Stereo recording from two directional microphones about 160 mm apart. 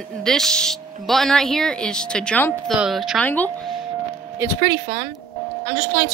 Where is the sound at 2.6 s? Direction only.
Centre (ahead or behind).